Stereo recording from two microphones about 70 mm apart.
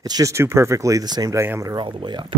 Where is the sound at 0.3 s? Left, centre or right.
Right.